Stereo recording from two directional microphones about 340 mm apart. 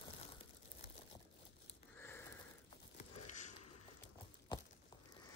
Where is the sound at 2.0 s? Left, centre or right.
Centre.